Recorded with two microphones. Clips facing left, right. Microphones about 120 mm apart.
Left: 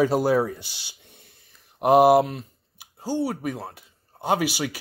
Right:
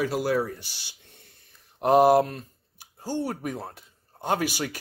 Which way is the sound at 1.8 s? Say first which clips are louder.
Left 2 dB; 10° left (ahead or behind).